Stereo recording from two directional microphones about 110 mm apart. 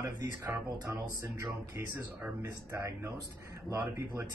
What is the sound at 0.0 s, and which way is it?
Speech, 20° right (ahead or behind).